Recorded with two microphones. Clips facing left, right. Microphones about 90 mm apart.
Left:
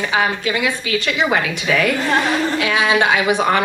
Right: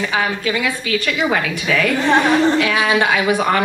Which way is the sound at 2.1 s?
25° right (ahead or behind).